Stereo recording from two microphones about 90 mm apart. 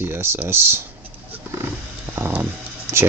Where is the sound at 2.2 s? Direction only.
20° right (ahead or behind).